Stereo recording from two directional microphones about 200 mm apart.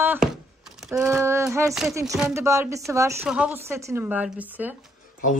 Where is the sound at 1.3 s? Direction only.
15° right (ahead or behind).